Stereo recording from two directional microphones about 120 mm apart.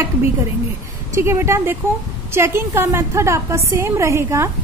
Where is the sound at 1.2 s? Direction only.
20° right (ahead or behind).